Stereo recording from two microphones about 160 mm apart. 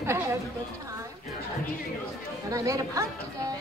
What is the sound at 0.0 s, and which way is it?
Chatter, 15° right (ahead or behind).